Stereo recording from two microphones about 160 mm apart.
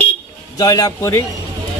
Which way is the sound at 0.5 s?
25° left (ahead or behind).